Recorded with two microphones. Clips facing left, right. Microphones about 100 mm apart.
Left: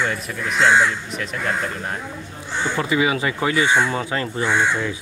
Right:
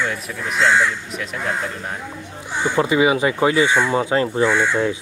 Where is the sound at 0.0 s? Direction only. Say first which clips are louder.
Even; 5° left (ahead or behind).